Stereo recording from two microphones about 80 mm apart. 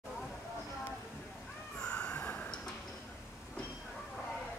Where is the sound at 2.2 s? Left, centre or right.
Left.